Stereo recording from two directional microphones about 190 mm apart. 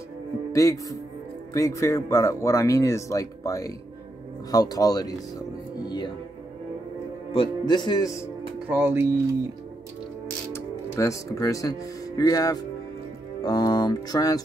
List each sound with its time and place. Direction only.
0.5 s speech: 15° left (ahead or behind)
4.5 s music: 20° left (ahead or behind)
7.3 s music: 25° left (ahead or behind)
8.6 s speech: 10° right (ahead or behind)
10.5 s speech: 15° left (ahead or behind)
13.4 s music: 20° left (ahead or behind)